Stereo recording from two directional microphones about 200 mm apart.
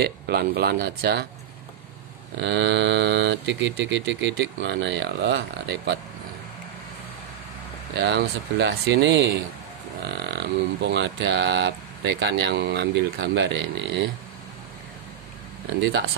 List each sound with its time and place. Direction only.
0.0 s speech: 50° right (ahead or behind)
2.3 s speech: 60° right (ahead or behind)
7.9 s speech: 60° right (ahead or behind)